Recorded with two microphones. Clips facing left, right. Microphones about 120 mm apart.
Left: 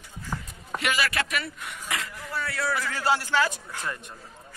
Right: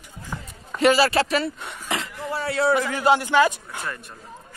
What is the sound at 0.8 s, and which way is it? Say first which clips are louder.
A man's voice: right 10 dB; 35° right (ahead or behind).